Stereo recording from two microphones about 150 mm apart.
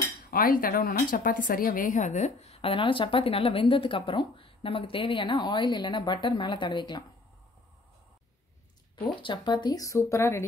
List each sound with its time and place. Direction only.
0.3 s a woman's voice: 75° left (ahead or behind); by 7.1 s 30° left (ahead or behind)
9.2 s speech: 30° left (ahead or behind)